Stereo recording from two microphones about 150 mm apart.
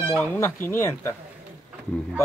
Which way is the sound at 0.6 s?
15° left (ahead or behind).